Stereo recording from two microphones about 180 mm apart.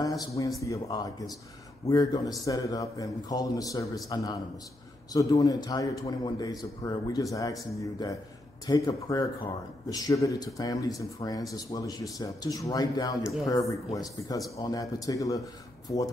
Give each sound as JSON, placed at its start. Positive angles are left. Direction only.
{"t": 0.0, "sound": "a man's voice", "side_deg": 20}